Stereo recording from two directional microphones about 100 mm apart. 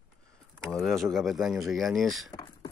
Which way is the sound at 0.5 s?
Centre (ahead or behind).